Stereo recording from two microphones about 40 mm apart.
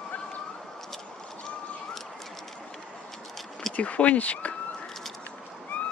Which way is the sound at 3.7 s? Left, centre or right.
Left.